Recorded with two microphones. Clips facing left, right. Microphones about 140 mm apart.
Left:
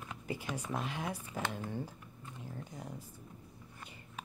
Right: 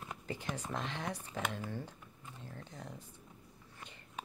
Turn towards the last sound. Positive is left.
turn(degrees=10)  # may be behind; listen again after turning